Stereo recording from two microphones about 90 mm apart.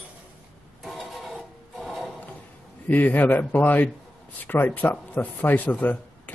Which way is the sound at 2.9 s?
20° left (ahead or behind).